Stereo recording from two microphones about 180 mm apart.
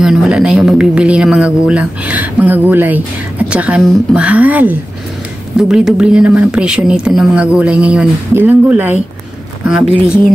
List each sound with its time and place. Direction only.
0.0 s speech: 5° right (ahead or behind)